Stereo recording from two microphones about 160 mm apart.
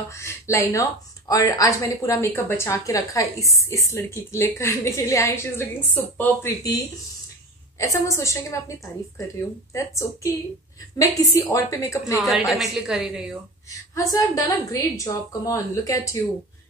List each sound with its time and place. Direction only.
0.1 s a woman's voice: 15° left (ahead or behind)
7.8 s a woman's voice: 20° left (ahead or behind)
9.8 s a woman's voice: 20° left (ahead or behind)
12.2 s a woman's voice: centre (ahead or behind)
13.9 s a woman's voice: 20° left (ahead or behind)